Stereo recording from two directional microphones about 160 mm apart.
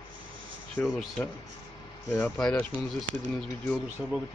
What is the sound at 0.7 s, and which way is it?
Speech, 5° left (ahead or behind).